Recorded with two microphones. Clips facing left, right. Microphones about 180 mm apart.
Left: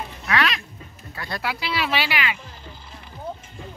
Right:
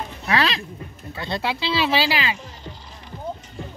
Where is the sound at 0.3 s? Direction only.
30° right (ahead or behind).